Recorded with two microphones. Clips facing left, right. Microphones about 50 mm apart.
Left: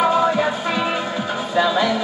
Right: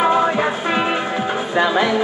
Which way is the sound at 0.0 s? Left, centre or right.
Right.